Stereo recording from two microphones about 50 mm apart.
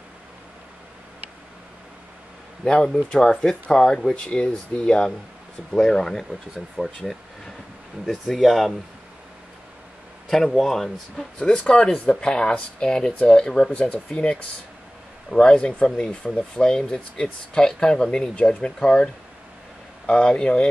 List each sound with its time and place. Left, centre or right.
2.6 s speech: centre
6.8 s speech: centre
8.0 s speech: centre
10.2 s speech: centre
11.3 s speech: centre
18.3 s speech: left
20.1 s speech: centre